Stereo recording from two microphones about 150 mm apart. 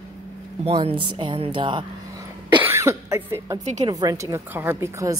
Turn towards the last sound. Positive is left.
turn(degrees=-20)  # may be behind; listen again after turning